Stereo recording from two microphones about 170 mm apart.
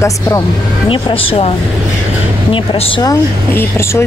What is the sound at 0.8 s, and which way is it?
Speech, 30° left (ahead or behind).